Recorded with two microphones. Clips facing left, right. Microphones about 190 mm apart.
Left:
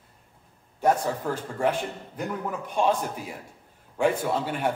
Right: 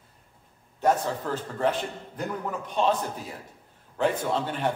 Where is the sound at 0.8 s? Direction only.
10° left (ahead or behind).